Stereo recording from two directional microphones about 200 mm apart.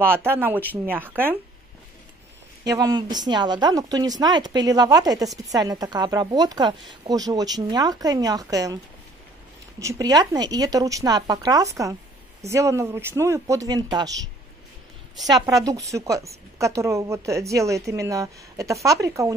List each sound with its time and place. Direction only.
0.0 s speech: 10° right (ahead or behind)
2.7 s a woman's voice: 20° right (ahead or behind)
9.8 s speech: 15° right (ahead or behind)
15.2 s a woman's voice: 20° right (ahead or behind)